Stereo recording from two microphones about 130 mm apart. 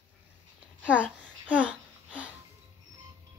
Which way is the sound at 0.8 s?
10° right (ahead or behind).